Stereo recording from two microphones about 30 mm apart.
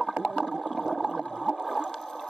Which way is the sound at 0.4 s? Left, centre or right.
Centre.